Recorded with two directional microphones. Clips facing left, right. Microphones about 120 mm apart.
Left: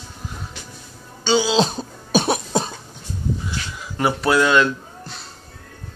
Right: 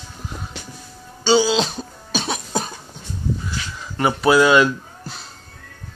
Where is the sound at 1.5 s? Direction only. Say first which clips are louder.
Left 3 dB; 35° left (ahead or behind).